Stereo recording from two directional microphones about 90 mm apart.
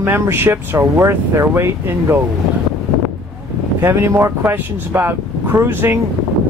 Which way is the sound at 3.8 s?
30° right (ahead or behind).